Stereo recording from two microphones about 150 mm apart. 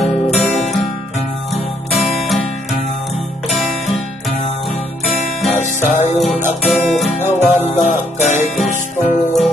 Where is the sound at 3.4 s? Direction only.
Centre (ahead or behind).